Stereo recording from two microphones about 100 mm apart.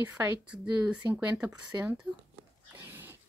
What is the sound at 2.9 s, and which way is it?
Dog, 20° right (ahead or behind).